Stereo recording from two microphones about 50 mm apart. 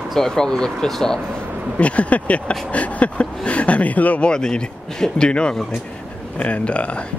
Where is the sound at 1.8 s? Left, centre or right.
Left.